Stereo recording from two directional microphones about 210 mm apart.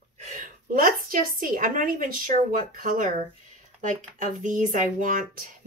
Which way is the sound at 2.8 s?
40° right (ahead or behind).